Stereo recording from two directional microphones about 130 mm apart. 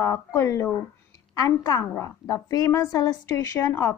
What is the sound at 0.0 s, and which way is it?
A woman's voice, 20° left (ahead or behind).